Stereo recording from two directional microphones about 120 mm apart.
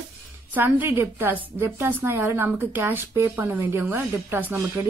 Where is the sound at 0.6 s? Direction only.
15° right (ahead or behind).